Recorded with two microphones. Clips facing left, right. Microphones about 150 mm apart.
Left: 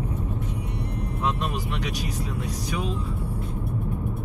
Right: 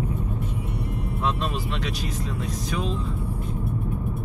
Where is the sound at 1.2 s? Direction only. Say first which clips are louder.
Right 1 dB; 15° left (ahead or behind).